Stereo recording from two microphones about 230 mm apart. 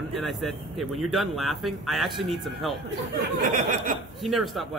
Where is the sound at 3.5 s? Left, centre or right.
Right.